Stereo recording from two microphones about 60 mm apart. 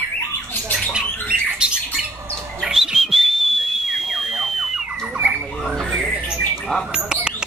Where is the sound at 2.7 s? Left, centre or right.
Centre.